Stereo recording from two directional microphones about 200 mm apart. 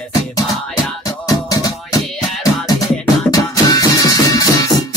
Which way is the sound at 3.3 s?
15° left (ahead or behind).